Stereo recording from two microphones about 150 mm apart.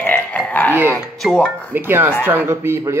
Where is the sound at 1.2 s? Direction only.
Centre (ahead or behind).